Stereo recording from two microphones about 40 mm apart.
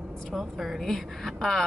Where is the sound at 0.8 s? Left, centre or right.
Centre.